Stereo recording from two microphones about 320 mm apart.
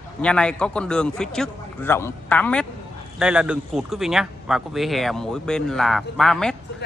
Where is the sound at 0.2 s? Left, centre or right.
Centre.